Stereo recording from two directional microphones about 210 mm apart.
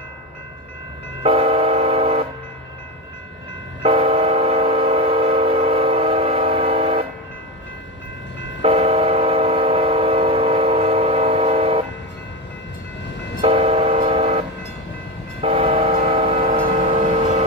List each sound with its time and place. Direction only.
1.2 s train: 25° right (ahead or behind)
3.8 s train: 25° right (ahead or behind)
8.6 s train: 30° right (ahead or behind)
13.4 s train: 25° right (ahead or behind)
15.4 s train: 25° right (ahead or behind)